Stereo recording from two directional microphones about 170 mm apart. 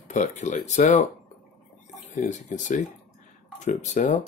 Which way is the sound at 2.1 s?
45° left (ahead or behind).